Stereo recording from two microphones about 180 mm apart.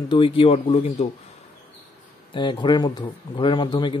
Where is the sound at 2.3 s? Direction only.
25° left (ahead or behind).